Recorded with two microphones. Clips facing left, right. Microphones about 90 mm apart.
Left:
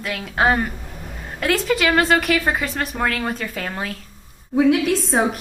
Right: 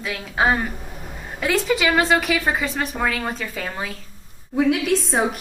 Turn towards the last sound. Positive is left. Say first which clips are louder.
# left 1 dB
turn(degrees=0)  # may be behind; listen again after turning